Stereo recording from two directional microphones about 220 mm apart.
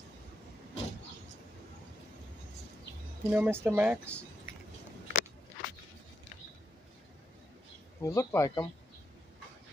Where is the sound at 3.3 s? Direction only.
10° right (ahead or behind).